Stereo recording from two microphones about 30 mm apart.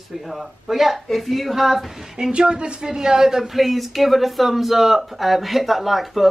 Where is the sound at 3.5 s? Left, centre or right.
Centre.